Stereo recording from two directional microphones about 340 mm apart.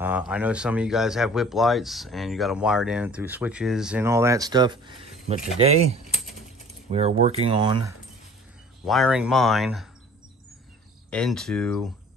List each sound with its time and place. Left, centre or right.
0.0 s speech: centre
8.8 s speech: centre
11.1 s speech: centre